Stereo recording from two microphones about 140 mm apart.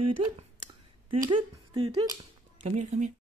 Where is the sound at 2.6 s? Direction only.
55° right (ahead or behind).